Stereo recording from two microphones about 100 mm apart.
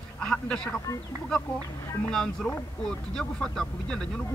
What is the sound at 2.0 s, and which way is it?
Speech, 5° left (ahead or behind).